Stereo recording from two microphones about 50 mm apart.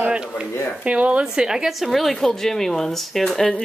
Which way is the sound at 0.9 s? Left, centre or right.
Right.